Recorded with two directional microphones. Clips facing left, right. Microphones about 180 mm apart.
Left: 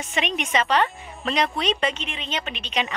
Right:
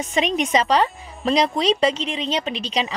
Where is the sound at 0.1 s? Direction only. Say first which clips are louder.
Right 5 dB; 35° right (ahead or behind).